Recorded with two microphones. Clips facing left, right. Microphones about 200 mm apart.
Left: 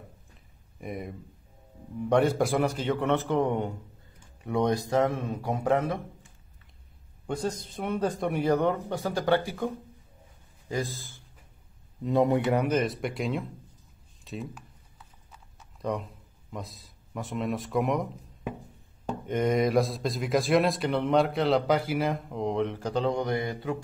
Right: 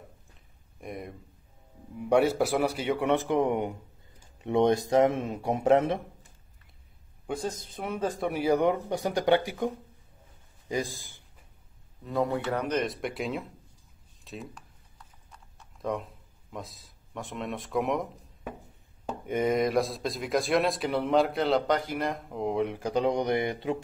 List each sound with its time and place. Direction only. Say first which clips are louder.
0.7 s a man's voice: left 2 dB; centre (ahead or behind); by 5.9 s 25° right (ahead or behind)
7.2 s a man's voice: left 2 dB; centre (ahead or behind)
12.0 s speech: left 5 dB; 20° left (ahead or behind); by 13.5 s centre (ahead or behind)
14.2 s a sound: left 4 dB; centre (ahead or behind)
16.5 s speech: left 1 dB; centre (ahead or behind); by 23.8 s 20° right (ahead or behind)